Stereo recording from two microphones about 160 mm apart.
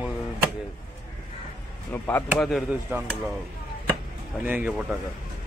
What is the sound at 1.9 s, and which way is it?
Speech, 15° left (ahead or behind).